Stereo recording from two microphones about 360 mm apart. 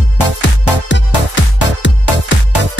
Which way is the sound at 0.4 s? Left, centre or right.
Left.